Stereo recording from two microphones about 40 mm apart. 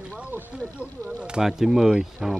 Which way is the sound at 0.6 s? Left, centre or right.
Right.